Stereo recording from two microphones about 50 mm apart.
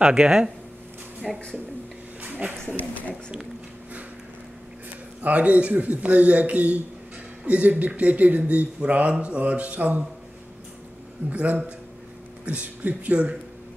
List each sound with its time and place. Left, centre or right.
0.0 s speech: centre
1.2 s speech: centre
2.3 s speech: right
2.8 s speech: left
5.2 s speech: right
11.2 s speech: right